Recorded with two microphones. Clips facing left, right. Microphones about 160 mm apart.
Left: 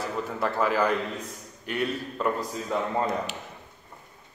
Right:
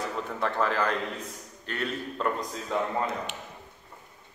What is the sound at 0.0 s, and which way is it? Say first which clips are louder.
A man's voice: left 2 dB; 5° left (ahead or behind).